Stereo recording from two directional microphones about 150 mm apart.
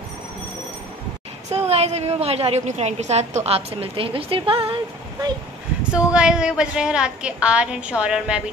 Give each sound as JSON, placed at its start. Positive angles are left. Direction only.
{"t": 1.5, "sound": "a woman's voice", "side_deg": -45}
{"t": 5.9, "sound": "a woman's voice", "side_deg": -5}